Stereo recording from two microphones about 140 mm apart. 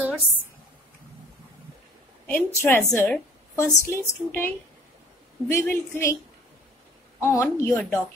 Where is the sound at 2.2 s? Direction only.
15° left (ahead or behind).